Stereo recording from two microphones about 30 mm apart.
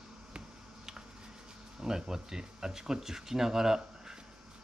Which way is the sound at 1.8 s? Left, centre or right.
Centre.